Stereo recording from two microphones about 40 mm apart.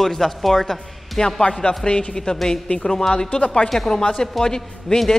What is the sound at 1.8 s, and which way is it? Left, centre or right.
Speech, left.